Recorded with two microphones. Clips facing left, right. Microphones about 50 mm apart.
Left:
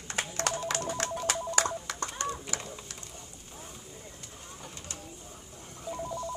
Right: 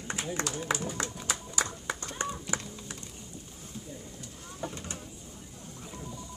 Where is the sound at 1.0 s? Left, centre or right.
Left.